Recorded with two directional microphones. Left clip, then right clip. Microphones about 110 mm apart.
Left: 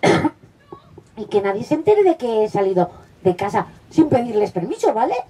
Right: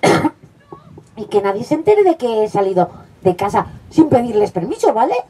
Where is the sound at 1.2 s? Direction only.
30° right (ahead or behind).